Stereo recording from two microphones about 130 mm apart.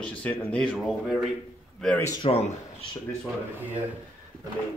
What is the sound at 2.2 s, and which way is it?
Speech, 50° left (ahead or behind).